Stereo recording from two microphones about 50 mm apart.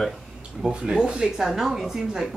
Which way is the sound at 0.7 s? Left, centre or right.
Right.